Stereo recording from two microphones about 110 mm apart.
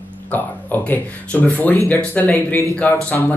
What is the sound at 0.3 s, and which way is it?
Speech, 15° left (ahead or behind).